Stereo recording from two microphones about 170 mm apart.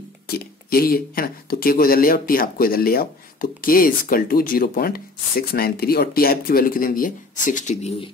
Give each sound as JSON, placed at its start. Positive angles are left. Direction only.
{"t": 0.3, "sound": "speech", "side_deg": 60}